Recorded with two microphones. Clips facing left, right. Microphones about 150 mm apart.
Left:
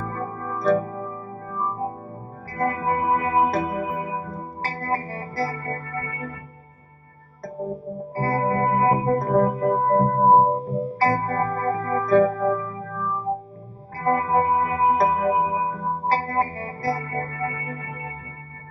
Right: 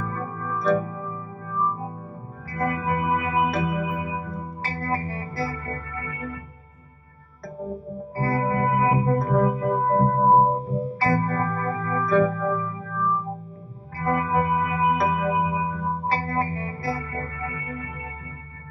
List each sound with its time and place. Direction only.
0.0 s music: 40° left (ahead or behind)
8.1 s music: 40° left (ahead or behind)